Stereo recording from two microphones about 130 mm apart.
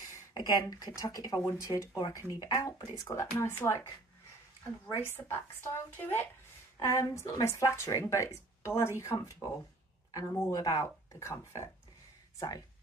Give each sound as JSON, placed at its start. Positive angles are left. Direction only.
{"t": 0.0, "sound": "speech", "side_deg": 30}
{"t": 4.8, "sound": "speech", "side_deg": 20}